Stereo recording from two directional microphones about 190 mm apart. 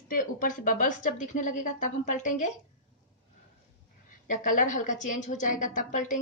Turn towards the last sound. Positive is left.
turn(degrees=45)  # may be behind; listen again after turning